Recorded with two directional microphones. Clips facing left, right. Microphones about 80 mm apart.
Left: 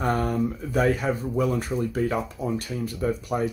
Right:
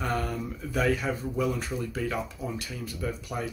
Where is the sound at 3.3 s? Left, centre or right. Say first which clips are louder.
Left 8 dB; left.